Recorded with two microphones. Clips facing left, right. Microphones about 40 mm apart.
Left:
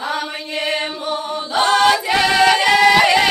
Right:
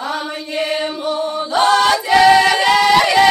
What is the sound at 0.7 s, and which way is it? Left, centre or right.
Chant, left.